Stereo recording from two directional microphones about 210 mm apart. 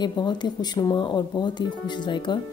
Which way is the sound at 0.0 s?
20° left (ahead or behind).